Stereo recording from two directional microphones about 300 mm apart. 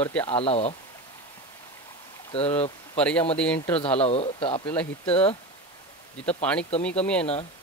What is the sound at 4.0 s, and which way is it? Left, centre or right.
A man's voice, centre.